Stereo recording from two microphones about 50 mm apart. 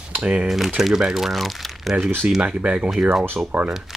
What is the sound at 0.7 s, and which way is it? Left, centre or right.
Speech, centre.